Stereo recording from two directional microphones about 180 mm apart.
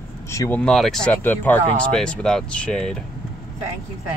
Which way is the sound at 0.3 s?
15° left (ahead or behind).